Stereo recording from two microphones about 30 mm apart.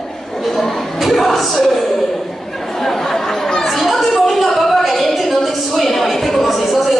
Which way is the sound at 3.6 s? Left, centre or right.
Centre.